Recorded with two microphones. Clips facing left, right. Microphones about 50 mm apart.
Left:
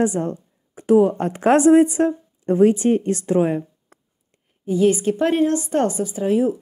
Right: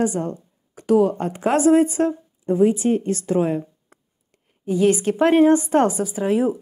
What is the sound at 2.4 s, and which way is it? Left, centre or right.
Speech, left.